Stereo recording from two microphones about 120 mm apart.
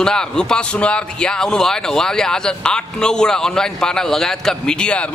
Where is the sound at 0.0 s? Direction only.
5° left (ahead or behind).